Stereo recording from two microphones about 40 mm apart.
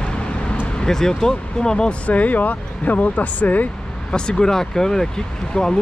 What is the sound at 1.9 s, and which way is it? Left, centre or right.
Speech, left.